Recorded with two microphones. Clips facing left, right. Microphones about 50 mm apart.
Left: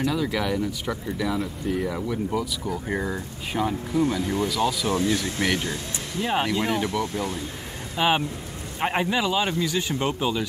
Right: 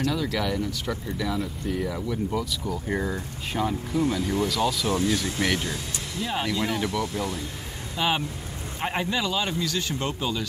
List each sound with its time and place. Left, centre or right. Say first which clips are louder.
0.0 s speech: left 1 dB; centre
6.2 s speech: left 3 dB; left